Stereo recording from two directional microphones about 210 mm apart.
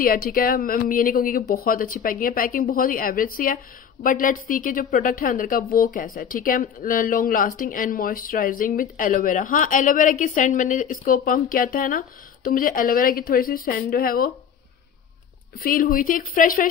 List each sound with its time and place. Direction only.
0.0 s a woman's voice: 45° left (ahead or behind)
15.6 s a woman's voice: 45° left (ahead or behind)